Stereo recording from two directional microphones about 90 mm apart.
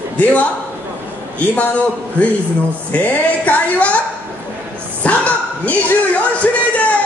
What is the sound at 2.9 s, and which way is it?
A man's voice, 15° left (ahead or behind).